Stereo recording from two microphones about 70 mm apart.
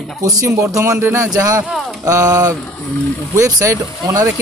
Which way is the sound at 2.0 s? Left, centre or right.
Right.